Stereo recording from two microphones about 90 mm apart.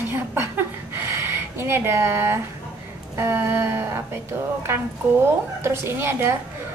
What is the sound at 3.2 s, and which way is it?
A woman's voice, 25° right (ahead or behind).